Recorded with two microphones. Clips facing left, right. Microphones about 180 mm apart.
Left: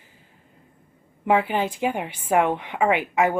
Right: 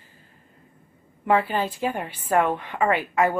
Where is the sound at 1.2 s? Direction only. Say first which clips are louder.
Left 1 dB; 15° left (ahead or behind).